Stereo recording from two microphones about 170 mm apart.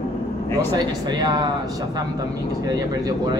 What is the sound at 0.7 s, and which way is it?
Speech, 25° right (ahead or behind).